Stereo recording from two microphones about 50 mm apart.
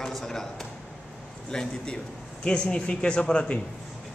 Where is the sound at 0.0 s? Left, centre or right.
Centre.